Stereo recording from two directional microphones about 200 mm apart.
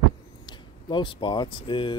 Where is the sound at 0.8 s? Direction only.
25° left (ahead or behind).